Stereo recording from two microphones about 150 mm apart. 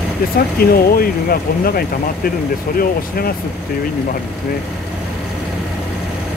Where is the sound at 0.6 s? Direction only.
80° left.